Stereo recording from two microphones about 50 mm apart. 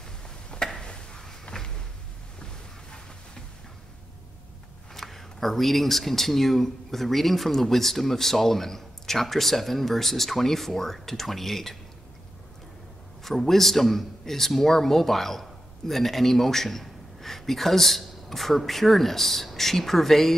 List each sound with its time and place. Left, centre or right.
0.5 s a sound: left
4.9 s a man's voice: centre
13.2 s a man's voice: centre